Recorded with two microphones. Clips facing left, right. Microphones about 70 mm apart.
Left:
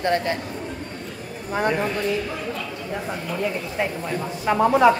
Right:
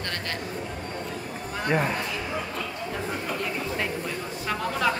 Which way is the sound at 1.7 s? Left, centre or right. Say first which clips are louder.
Even; centre.